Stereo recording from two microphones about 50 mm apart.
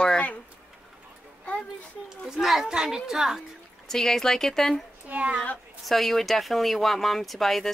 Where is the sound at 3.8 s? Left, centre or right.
Centre.